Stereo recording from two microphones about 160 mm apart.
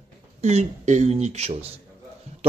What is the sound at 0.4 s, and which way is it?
Speech, 45° right (ahead or behind).